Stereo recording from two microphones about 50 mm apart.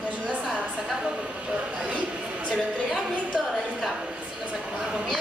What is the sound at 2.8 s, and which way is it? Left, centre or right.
Speech, right.